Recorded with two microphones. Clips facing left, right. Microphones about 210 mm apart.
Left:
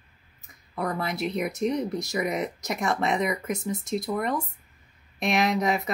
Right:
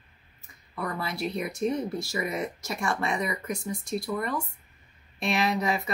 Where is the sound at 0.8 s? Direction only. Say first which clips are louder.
Left 3 dB; 20° left (ahead or behind).